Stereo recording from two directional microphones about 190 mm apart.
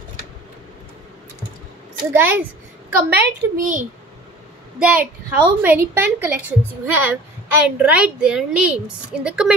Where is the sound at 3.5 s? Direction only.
45° right (ahead or behind).